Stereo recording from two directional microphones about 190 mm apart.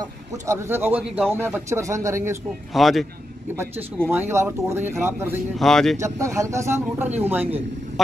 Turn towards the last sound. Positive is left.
turn(degrees=-10)  # may be behind; listen again after turning